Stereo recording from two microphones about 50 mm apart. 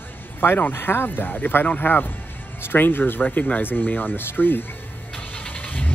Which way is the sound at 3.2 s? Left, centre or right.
Left.